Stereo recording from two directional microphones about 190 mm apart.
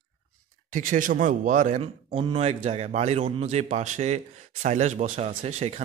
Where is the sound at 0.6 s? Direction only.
45° right (ahead or behind).